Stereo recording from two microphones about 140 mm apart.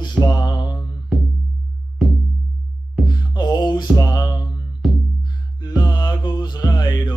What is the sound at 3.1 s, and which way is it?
Music, 30° left (ahead or behind).